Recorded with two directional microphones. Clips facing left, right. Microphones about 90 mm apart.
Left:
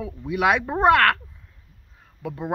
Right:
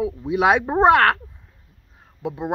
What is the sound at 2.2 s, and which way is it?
Speech, 20° right (ahead or behind).